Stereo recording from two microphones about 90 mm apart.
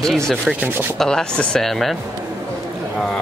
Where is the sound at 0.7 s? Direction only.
25° right (ahead or behind).